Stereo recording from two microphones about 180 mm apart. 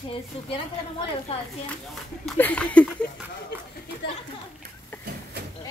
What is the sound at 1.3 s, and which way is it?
Speech, 35° left (ahead or behind).